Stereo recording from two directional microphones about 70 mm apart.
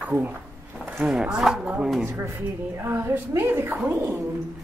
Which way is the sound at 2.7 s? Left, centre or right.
Right.